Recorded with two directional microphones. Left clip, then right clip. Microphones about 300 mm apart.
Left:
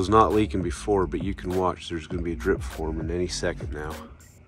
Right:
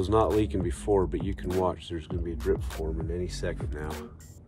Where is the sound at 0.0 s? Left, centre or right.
Centre.